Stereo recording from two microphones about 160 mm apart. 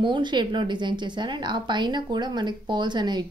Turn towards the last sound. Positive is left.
turn(degrees=-30)  # may be behind; listen again after turning